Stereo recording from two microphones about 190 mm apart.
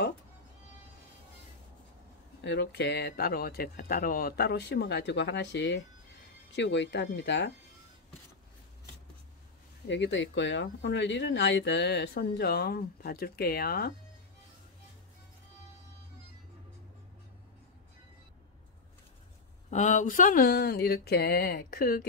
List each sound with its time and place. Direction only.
2.4 s speech: 60° left (ahead or behind)
9.8 s speech: 70° left (ahead or behind); by 13.9 s 55° left (ahead or behind)
19.7 s speech: 40° left (ahead or behind)